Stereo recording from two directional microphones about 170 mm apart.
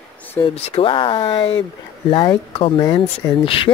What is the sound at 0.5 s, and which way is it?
Speech, 35° left (ahead or behind).